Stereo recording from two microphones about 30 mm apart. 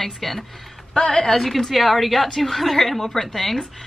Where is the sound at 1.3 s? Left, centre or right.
Centre.